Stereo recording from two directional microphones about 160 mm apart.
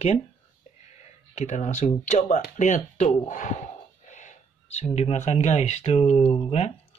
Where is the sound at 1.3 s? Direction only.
45° left (ahead or behind).